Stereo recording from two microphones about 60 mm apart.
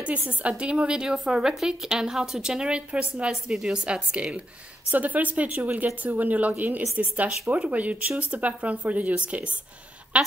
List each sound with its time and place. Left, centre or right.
0.3 s a woman's voice: right